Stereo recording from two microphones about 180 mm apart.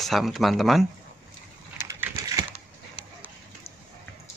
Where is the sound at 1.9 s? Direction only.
15° right (ahead or behind).